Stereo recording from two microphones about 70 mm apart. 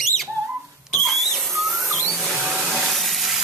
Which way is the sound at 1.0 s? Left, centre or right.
Centre.